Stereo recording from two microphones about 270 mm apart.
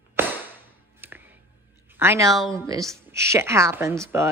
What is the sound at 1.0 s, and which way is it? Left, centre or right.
Music, centre.